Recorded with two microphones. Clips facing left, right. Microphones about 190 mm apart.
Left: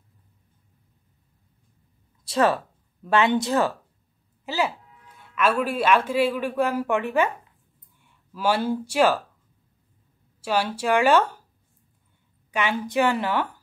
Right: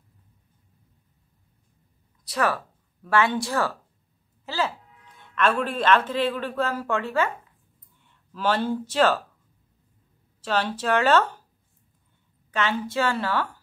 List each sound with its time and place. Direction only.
2.2 s speech: 25° left (ahead or behind); by 9.2 s 10° left (ahead or behind)
10.4 s a woman's voice: 10° left (ahead or behind)
12.4 s a woman's voice: 10° left (ahead or behind)